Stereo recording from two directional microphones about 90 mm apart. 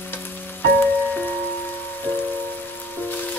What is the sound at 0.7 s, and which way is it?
Music, 20° left (ahead or behind).